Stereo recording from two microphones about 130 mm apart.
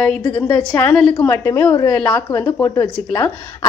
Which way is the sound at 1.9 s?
10° left (ahead or behind).